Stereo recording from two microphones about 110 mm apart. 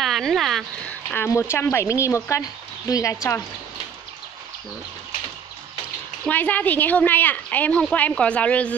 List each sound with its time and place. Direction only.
0.0 s speech: centre (ahead or behind)
0.8 s a woman's voice: 20° left (ahead or behind)
6.2 s a woman's voice: 15° left (ahead or behind)